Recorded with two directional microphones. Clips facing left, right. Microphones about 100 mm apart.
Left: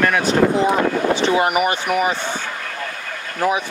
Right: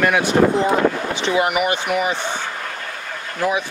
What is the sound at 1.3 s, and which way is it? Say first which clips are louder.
Speech: left 1 dB; 40° left (ahead or behind).